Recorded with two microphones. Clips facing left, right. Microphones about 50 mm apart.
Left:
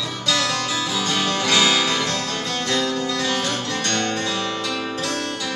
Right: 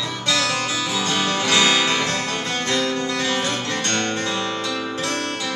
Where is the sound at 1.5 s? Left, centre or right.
Right.